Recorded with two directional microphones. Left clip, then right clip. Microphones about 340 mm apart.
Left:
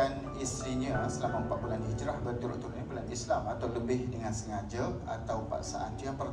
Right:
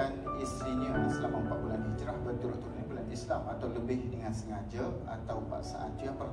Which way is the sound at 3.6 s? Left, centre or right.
Left.